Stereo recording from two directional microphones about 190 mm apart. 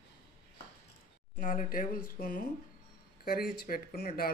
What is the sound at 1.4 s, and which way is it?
Speech, 45° left (ahead or behind).